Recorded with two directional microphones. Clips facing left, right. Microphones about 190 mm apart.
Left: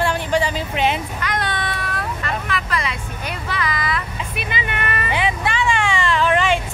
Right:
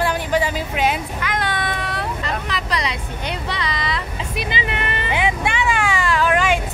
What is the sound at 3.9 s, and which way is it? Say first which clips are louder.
Vehicle: even; 30° right (ahead or behind).